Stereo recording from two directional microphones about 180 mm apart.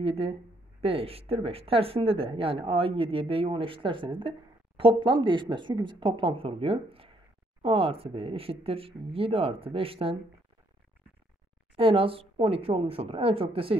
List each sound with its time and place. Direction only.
0.0 s speech: 35° right (ahead or behind)
11.7 s speech: 30° right (ahead or behind)